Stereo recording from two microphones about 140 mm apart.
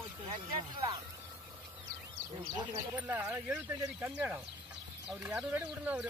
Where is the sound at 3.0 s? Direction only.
15° right (ahead or behind).